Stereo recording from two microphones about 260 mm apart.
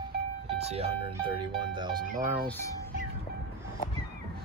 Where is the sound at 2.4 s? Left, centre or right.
Centre.